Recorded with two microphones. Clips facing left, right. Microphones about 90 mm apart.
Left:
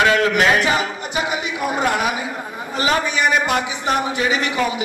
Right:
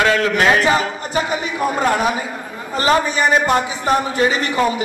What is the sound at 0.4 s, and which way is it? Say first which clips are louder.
A man's voice: right 2 dB; 35° right (ahead or behind).